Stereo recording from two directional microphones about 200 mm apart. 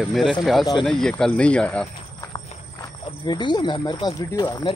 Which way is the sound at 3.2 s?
20° left (ahead or behind).